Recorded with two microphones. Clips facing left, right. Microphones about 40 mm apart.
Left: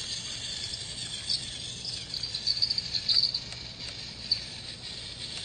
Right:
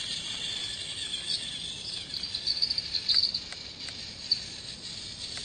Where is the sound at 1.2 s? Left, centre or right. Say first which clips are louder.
Left 2 dB; right.